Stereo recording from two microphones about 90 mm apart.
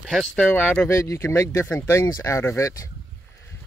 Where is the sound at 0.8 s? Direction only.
30° left (ahead or behind).